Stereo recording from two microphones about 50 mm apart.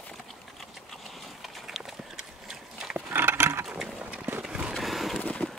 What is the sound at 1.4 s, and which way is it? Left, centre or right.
Clip-clop, centre.